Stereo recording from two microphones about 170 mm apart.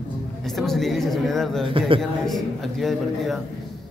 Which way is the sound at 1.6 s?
30° right (ahead or behind).